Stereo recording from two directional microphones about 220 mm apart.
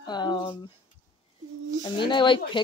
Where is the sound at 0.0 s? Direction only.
20° left (ahead or behind).